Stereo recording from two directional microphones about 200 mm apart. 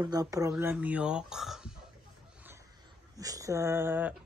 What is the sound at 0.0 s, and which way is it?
Speech, 20° right (ahead or behind).